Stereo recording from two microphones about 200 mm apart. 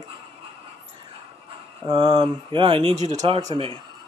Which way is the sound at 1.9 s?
25° right (ahead or behind).